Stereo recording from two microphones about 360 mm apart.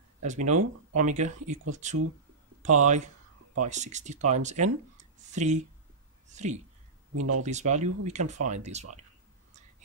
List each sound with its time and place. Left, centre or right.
0.5 s speech: centre
7.2 s speech: right
7.4 s speech: centre